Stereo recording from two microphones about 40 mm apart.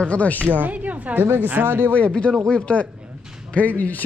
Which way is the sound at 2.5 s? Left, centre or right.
Left.